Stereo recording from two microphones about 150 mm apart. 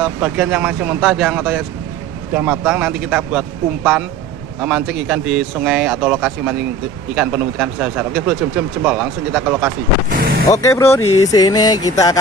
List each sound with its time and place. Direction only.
0.0 s speech: 5° right (ahead or behind)
10.5 s speech: 20° left (ahead or behind)